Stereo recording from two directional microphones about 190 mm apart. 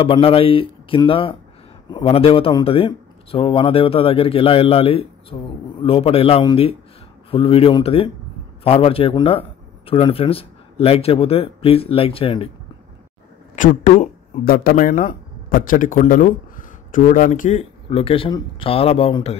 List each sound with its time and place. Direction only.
0.0 s a man's voice: 30° left (ahead or behind)
13.6 s speech: 45° left (ahead or behind)